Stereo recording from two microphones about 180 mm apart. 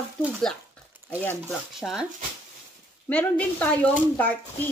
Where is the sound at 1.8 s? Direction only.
5° right (ahead or behind).